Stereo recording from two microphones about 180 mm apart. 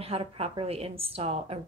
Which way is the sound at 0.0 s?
30° right (ahead or behind).